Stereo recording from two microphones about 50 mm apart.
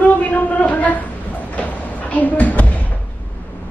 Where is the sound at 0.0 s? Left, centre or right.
Left.